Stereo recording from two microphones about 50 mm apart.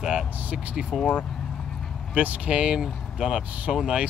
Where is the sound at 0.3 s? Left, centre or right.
Right.